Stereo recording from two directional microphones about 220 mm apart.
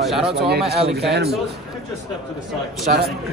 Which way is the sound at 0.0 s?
Centre (ahead or behind).